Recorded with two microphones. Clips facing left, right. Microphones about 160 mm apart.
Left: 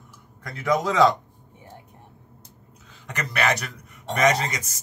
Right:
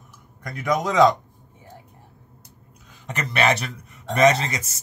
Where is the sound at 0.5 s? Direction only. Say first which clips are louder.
Even; 15° right (ahead or behind).